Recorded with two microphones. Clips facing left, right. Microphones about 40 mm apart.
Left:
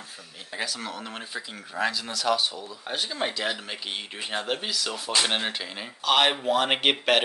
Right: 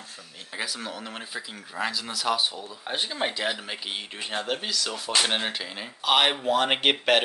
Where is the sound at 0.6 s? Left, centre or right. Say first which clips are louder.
Even; centre.